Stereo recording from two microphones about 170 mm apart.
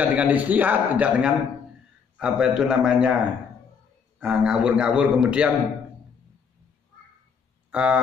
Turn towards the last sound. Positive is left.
turn(degrees=-5)  # may be behind; listen again after turning